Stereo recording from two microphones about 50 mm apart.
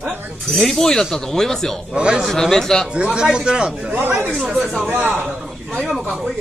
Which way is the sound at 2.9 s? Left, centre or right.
Centre.